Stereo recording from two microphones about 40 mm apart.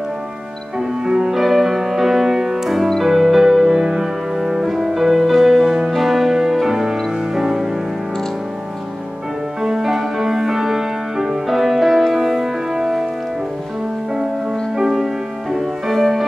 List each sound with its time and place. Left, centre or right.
0.7 s music: centre
9.6 s music: centre
14.1 s music: centre